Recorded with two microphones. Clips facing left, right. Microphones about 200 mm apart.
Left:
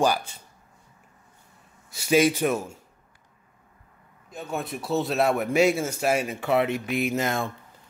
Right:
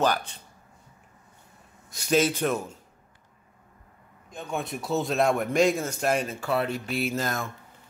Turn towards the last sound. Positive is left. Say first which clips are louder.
# left 3 dB
turn(degrees=20)  # may be behind; listen again after turning